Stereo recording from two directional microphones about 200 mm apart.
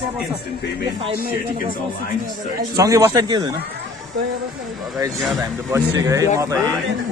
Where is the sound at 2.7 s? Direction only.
15° right (ahead or behind).